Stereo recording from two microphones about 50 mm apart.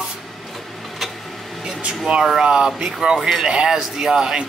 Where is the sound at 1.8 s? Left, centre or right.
Right.